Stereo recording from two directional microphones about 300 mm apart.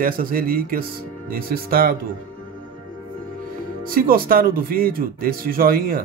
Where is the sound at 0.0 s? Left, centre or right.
Right.